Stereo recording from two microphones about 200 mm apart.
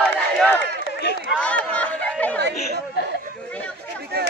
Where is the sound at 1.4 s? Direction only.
5° left (ahead or behind).